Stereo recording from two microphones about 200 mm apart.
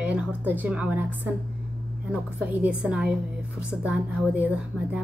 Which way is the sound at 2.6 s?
5° right (ahead or behind).